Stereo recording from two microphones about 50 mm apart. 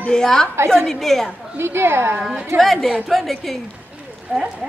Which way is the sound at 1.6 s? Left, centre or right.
Right.